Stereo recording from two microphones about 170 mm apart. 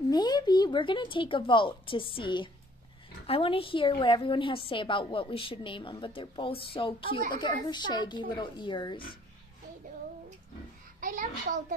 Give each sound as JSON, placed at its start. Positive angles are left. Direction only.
{"t": 0.1, "sound": "a woman's voice", "side_deg": 25}
{"t": 11.0, "sound": "a child's voice", "side_deg": -50}